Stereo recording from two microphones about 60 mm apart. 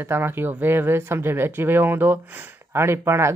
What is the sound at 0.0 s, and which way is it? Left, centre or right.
Speech, right.